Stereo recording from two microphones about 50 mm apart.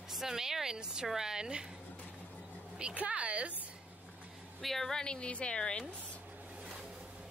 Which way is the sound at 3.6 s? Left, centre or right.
Right.